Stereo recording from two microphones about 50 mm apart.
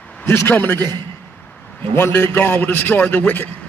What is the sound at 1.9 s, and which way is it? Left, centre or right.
A man's voice, left.